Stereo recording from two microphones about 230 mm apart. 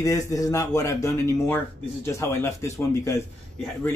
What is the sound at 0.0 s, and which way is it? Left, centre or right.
Speech, centre.